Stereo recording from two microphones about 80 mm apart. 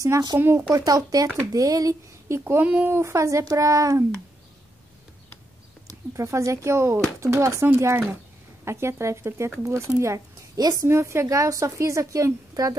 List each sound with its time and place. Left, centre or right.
0.0 s a woman's voice: right
0.7 s speech: right
2.6 s speech: centre
2.9 s a woman's voice: right
5.9 s a woman's voice: right
9.9 s a sound: right
10.7 s a woman's voice: right